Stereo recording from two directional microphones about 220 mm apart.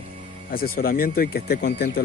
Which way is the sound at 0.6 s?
40° left (ahead or behind).